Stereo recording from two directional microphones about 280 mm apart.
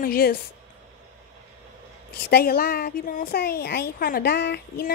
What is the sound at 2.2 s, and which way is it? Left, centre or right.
Speech, left.